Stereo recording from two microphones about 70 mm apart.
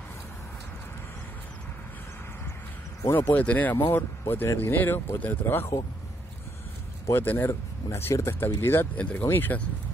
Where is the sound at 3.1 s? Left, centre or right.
Left.